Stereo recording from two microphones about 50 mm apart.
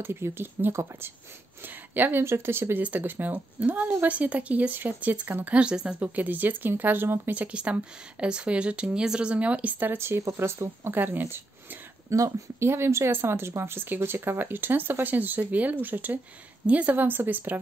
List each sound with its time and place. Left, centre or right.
0.0 s speech: right
2.2 s speech: right
2.8 s speech: right
5.6 s speech: centre
5.9 s speech: right
7.3 s speech: right
9.9 s speech: right
11.0 s speech: right
12.1 s speech: right